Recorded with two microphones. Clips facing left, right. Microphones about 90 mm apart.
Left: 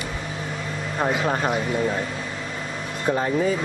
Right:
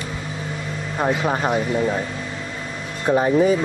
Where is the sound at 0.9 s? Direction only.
10° right (ahead or behind).